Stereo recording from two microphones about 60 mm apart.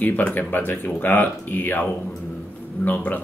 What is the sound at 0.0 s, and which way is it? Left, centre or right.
Speech, left.